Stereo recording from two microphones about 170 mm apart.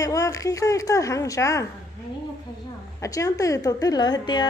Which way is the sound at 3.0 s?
20° left (ahead or behind).